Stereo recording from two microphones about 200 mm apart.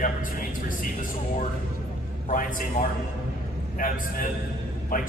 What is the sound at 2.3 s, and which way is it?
A man's voice, 40° left (ahead or behind).